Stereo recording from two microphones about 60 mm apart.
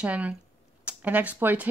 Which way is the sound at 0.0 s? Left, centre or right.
Right.